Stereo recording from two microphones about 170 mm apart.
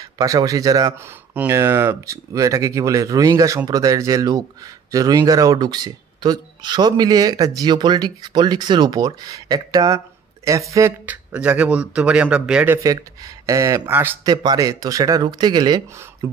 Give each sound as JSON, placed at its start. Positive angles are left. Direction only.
{"t": 0.0, "sound": "speech", "side_deg": -20}
{"t": 14.3, "sound": "speech", "side_deg": -25}